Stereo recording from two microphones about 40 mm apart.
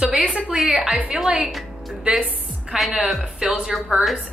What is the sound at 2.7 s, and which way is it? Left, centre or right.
A woman's voice, centre.